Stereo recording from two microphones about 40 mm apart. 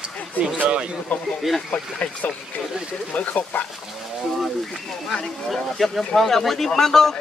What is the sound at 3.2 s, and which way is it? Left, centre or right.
Speech, left.